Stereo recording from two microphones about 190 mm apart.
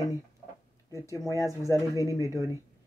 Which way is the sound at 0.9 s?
15° left (ahead or behind).